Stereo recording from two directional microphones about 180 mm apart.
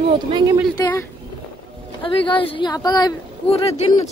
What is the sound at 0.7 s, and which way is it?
Speech, 20° left (ahead or behind).